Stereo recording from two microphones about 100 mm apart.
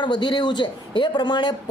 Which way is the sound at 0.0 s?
50° left (ahead or behind).